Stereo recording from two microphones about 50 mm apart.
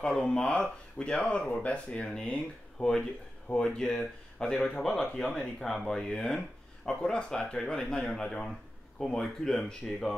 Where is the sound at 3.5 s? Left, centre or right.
Centre.